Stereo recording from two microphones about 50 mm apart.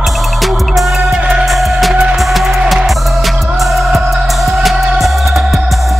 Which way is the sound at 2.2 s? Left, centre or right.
Centre.